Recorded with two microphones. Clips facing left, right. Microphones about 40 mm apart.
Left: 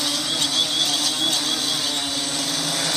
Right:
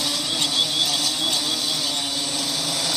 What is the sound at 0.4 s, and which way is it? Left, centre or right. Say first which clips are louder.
Vehicle: right 1 dB; centre.